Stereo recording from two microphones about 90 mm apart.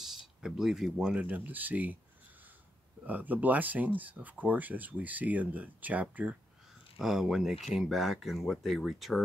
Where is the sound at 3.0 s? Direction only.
20° right (ahead or behind).